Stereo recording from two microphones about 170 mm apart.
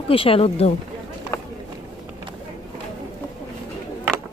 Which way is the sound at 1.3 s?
15° left (ahead or behind).